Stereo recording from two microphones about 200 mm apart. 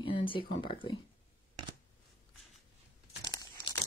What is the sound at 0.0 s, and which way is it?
Speech, 25° left (ahead or behind).